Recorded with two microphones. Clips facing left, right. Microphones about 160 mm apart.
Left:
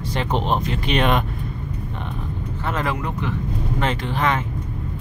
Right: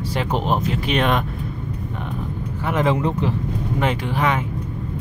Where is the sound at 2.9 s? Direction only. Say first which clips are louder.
Right 5 dB; 30° right (ahead or behind).